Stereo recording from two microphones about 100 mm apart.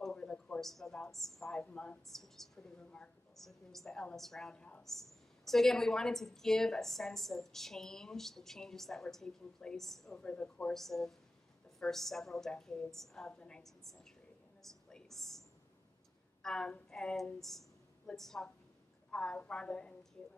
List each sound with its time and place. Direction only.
0.0 s a woman's voice: 10° left (ahead or behind)
14.6 s a sound: 5° left (ahead or behind)
16.4 s a woman's voice: 5° left (ahead or behind)